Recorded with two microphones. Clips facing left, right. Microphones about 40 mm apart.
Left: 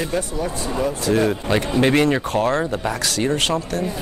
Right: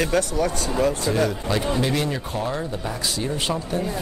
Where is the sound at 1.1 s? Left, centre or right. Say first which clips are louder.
Left 4 dB; left.